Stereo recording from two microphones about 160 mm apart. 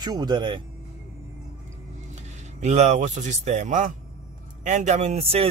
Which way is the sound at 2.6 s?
45° right (ahead or behind).